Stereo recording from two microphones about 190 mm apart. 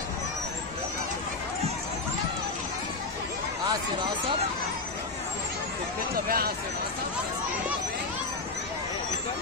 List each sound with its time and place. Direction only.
6.1 s speech: 50° right (ahead or behind)